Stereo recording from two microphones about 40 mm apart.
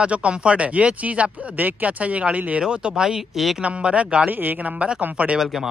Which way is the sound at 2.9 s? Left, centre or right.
Centre.